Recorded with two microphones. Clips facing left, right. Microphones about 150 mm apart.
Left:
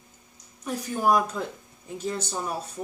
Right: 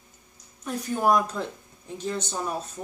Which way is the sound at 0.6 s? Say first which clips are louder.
Right 1 dB; 5° left (ahead or behind).